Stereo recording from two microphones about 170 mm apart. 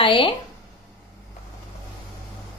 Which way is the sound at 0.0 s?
30° left (ahead or behind).